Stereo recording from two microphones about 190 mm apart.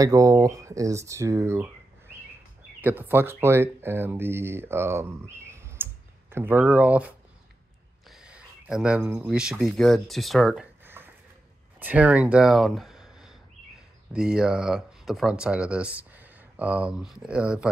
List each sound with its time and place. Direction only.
0.0 s speech: 15° right (ahead or behind)
8.1 s a sound: 5° right (ahead or behind)
9.3 s speech: 5° right (ahead or behind)